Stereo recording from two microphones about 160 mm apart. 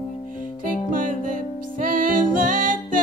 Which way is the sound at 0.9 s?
60° right (ahead or behind).